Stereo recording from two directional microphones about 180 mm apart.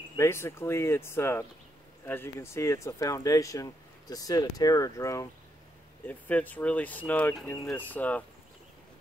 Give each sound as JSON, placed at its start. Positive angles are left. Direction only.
{"t": 0.1, "sound": "speech", "side_deg": 15}